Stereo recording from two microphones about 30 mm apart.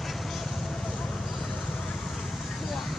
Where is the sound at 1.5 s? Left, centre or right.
Left.